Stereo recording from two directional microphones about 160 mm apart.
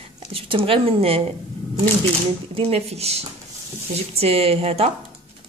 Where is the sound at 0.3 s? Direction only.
35° right (ahead or behind).